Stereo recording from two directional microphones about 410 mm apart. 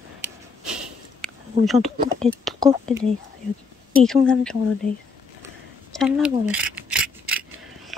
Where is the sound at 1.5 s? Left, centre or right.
Centre.